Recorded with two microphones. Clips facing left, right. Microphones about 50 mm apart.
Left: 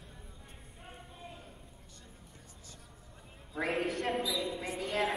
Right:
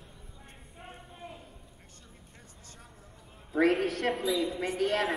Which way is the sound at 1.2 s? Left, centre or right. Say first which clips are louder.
Right 4 dB; right.